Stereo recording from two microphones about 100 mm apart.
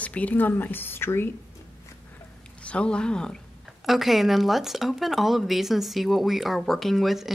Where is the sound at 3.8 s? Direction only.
Centre (ahead or behind).